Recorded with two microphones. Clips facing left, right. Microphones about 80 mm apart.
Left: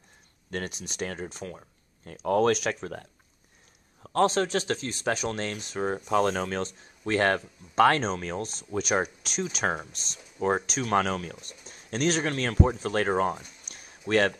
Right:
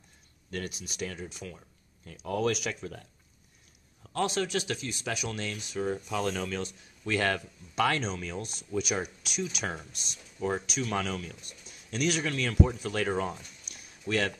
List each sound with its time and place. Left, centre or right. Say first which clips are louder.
0.7 s speech: left 3 dB; left
1.0 s speech: left 4 dB; left
13.7 s a sound: left 5 dB; left